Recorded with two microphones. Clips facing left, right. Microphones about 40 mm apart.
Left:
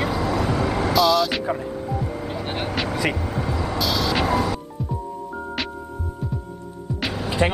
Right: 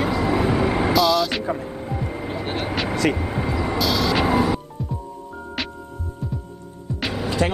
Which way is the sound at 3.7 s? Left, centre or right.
Centre.